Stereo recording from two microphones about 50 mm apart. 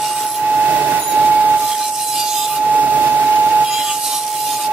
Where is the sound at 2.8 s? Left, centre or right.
Right.